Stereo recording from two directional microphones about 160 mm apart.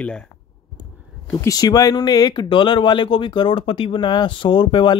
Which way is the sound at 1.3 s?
20° left (ahead or behind).